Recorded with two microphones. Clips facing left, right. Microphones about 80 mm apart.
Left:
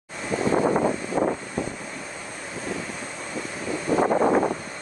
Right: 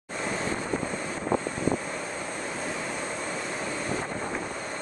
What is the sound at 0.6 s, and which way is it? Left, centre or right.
Vehicle, left.